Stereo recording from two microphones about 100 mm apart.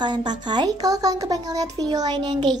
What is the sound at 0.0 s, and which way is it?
A child's voice, 50° right (ahead or behind).